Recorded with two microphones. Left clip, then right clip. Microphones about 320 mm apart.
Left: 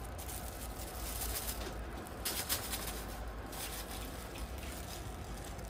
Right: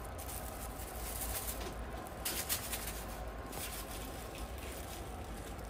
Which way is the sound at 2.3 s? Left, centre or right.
Left.